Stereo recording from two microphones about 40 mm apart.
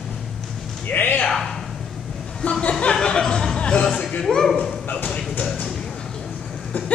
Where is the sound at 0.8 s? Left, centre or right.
Left.